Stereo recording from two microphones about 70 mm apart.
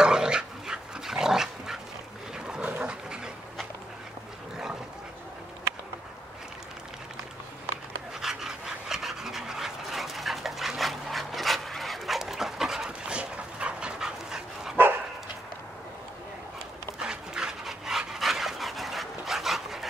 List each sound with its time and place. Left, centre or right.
0.0 s dog: centre
2.3 s wild animals: centre
2.7 s dog: centre
8.2 s dog: centre
17.0 s dog: centre